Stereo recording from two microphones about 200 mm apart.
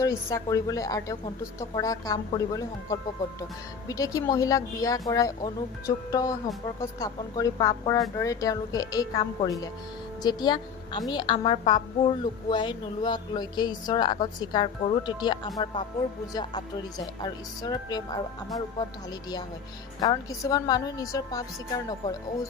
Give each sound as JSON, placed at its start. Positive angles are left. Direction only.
{"t": 0.0, "sound": "a woman's voice", "side_deg": 15}